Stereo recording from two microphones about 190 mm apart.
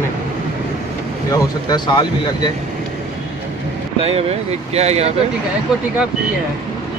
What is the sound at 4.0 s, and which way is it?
Speech, 30° right (ahead or behind).